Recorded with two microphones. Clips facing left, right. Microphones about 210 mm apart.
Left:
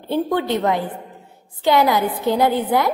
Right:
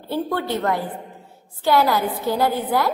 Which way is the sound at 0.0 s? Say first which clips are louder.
Left 4 dB; 20° left (ahead or behind).